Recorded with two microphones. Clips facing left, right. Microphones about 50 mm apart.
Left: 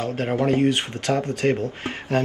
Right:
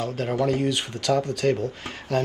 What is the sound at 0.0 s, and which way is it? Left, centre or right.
Speech, left.